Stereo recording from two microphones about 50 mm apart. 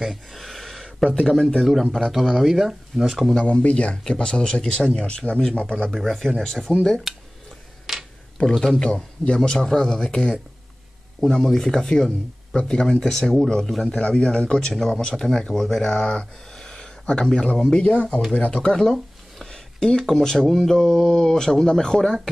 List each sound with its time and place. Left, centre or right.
0.0 s a sound: centre
1.2 s speech: centre
3.3 s speech: left
5.9 s speech: centre
7.9 s a sound: centre
8.7 s speech: centre
9.7 s speech: centre
13.9 s speech: centre
16.5 s a sound: centre
17.2 s speech: centre
18.9 s speech: centre